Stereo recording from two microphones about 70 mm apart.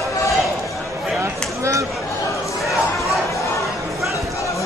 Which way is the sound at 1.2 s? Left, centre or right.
Right.